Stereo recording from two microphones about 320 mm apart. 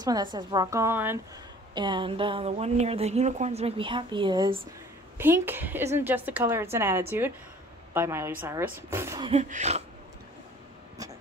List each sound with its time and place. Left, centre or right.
0.0 s speech: centre